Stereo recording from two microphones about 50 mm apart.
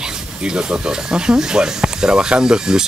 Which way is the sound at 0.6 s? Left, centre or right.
Centre.